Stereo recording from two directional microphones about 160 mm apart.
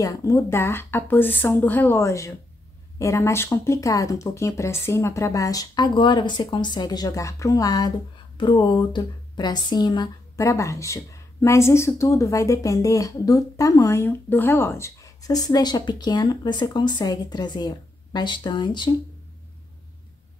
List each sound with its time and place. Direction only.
0.0 s speech: 20° left (ahead or behind)